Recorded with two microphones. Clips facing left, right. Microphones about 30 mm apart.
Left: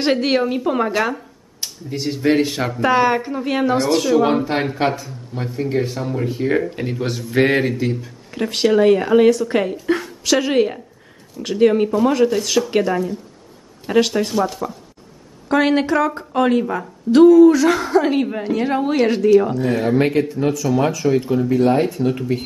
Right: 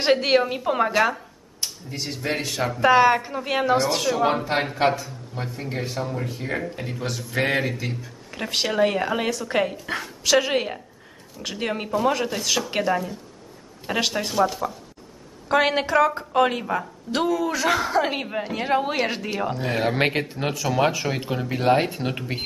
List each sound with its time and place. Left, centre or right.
0.0 s speech: centre
2.8 s speech: centre
6.0 s speech: centre
19.5 s speech: centre
20.0 s speech: right